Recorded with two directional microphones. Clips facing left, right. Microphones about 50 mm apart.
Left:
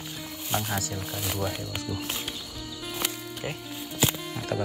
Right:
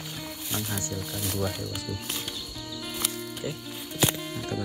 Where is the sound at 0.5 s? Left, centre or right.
Left.